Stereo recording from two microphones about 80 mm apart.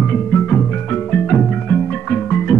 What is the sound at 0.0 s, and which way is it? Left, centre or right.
Music, left.